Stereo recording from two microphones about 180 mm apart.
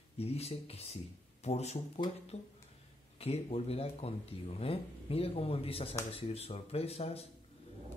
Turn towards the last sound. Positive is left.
turn(degrees=35)  # may be behind; listen again after turning